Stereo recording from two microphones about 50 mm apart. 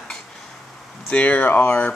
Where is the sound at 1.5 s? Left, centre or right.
Left.